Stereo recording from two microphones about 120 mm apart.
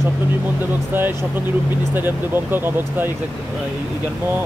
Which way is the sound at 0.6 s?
15° right (ahead or behind).